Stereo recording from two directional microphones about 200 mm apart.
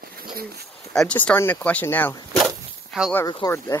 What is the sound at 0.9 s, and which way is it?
Speech, 5° left (ahead or behind).